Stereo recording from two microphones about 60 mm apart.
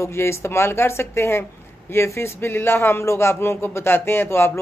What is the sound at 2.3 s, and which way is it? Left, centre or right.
Speech, left.